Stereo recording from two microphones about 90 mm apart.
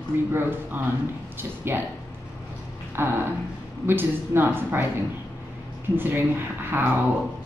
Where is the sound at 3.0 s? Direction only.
25° right (ahead or behind).